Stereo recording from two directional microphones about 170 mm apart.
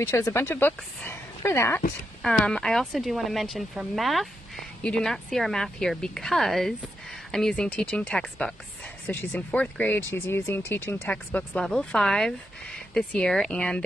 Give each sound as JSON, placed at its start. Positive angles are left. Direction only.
{"t": 0.0, "sound": "speech", "side_deg": 15}
{"t": 2.2, "sound": "speech", "side_deg": 5}